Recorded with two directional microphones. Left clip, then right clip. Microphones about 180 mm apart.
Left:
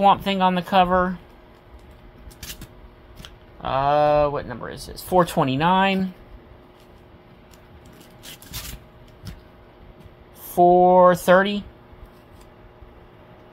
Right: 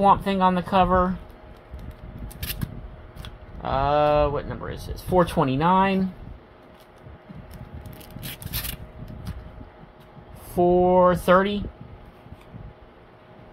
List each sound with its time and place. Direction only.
0.0 s speech: 15° left (ahead or behind)
2.4 s scissors: 50° right (ahead or behind)
3.2 s speech: 15° left (ahead or behind)
8.2 s a sound: 50° right (ahead or behind)
10.5 s speech: 25° left (ahead or behind)